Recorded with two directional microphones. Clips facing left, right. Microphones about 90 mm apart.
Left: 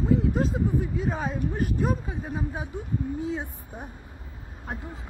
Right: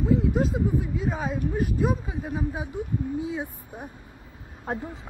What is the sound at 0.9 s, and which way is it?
Speech, centre (ahead or behind).